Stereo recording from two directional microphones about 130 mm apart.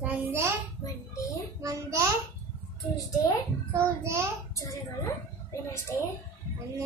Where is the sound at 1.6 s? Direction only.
25° right (ahead or behind).